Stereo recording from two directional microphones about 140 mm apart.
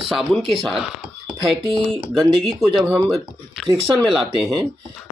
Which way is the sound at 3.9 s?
Centre (ahead or behind).